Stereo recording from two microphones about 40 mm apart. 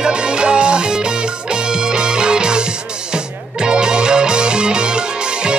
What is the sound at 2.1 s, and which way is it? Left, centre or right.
Music, right.